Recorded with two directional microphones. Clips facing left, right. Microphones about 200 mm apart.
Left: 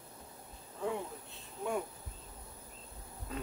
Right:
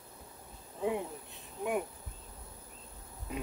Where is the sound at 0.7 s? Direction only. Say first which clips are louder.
Right 3 dB; 15° right (ahead or behind).